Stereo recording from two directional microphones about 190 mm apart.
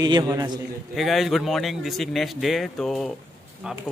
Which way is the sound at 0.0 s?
20° right (ahead or behind).